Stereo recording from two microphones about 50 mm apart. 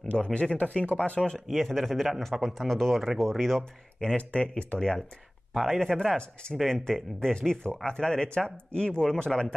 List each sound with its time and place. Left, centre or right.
0.1 s speech: left
1.3 s a man's voice: centre
4.2 s speech: left
4.7 s speech: centre
5.5 s speech: centre
5.8 s speech: centre